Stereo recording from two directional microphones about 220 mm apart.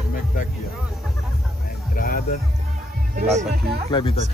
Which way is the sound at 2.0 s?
40° left (ahead or behind).